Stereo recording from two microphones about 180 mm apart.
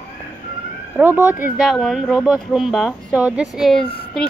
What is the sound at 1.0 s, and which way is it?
Speech, 10° right (ahead or behind).